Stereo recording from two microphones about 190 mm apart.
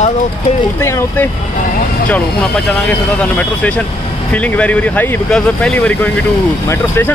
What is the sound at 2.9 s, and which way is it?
Speech, 5° left (ahead or behind).